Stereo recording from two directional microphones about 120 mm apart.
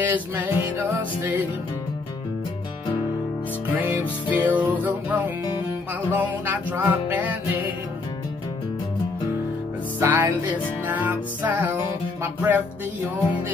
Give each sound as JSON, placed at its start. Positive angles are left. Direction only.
{"t": 0.0, "sound": "music", "side_deg": -15}
{"t": 4.3, "sound": "music", "side_deg": -15}
{"t": 9.9, "sound": "music", "side_deg": -15}